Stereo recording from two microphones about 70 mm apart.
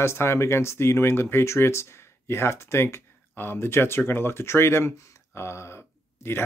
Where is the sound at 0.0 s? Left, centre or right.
Left.